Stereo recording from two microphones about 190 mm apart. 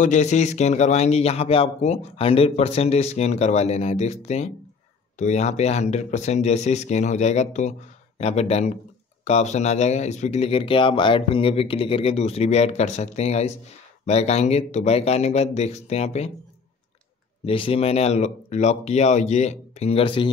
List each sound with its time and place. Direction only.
0.0 s a man's voice: 40° left (ahead or behind)
17.5 s a man's voice: 30° left (ahead or behind)